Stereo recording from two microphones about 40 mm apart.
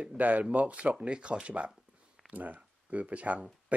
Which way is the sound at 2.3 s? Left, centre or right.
Right.